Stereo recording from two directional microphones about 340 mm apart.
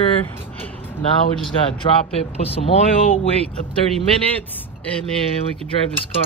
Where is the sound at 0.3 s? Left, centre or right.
Centre.